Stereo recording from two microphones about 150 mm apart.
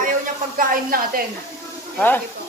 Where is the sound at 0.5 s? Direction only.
70° right (ahead or behind).